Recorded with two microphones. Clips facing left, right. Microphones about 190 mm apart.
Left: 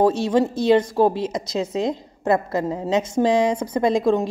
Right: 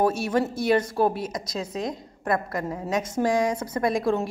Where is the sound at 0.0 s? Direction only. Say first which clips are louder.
Left 5 dB; 20° left (ahead or behind).